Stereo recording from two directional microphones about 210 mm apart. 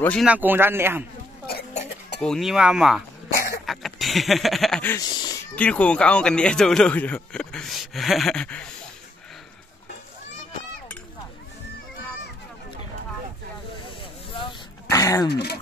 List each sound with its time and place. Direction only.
0.0 s speech: 5° left (ahead or behind)
0.3 s speech: 10° right (ahead or behind)
2.2 s speech: centre (ahead or behind)
3.6 s a sound: centre (ahead or behind)
5.0 s speech: 20° left (ahead or behind)
5.6 s speech: 5° left (ahead or behind)
14.3 s dog: 25° left (ahead or behind)
14.9 s a sound: 15° left (ahead or behind)
15.2 s speech: 50° left (ahead or behind)